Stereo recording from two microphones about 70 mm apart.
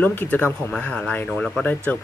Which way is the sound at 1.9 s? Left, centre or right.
Left.